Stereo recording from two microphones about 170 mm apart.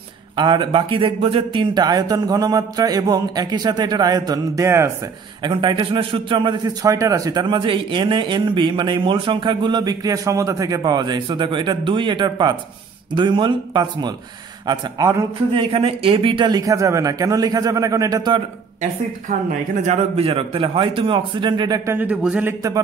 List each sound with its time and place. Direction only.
0.4 s a man's voice: 30° right (ahead or behind)
5.4 s a man's voice: 30° right (ahead or behind)
15.7 s a man's voice: 35° right (ahead or behind)
19.8 s a man's voice: 40° right (ahead or behind); by 21.9 s 25° right (ahead or behind)
21.9 s a man's voice: 10° right (ahead or behind)